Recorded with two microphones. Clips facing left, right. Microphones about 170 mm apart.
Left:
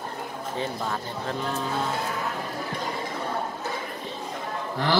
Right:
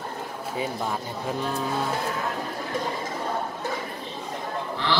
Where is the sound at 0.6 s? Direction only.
10° right (ahead or behind).